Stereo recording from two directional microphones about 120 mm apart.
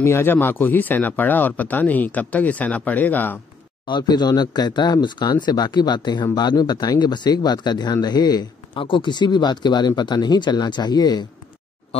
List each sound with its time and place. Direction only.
0.0 s speech: 20° left (ahead or behind)
3.8 s speech: 35° left (ahead or behind)